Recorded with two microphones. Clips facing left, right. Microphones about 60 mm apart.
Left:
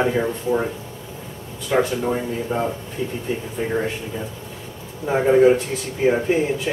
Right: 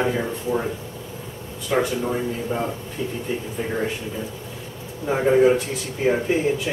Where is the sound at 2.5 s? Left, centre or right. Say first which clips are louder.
Left 3 dB; left.